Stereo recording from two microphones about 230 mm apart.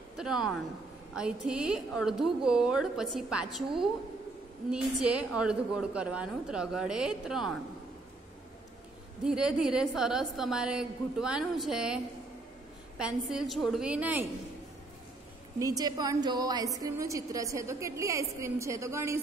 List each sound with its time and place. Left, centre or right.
0.2 s a woman's voice: centre
9.2 s a woman's voice: centre
15.6 s a woman's voice: centre